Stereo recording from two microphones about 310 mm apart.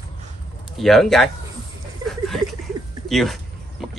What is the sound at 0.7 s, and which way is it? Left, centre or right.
Speech, centre.